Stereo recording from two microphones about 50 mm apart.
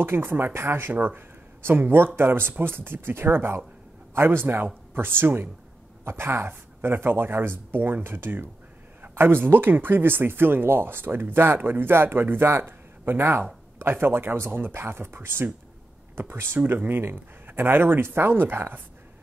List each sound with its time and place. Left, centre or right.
0.0 s speech: right
0.9 s speech: right